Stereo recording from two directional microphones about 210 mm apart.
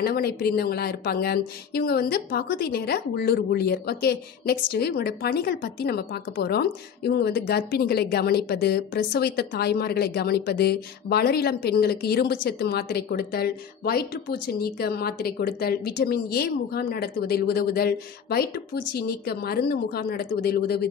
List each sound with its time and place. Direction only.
0.0 s speech: 45° left (ahead or behind)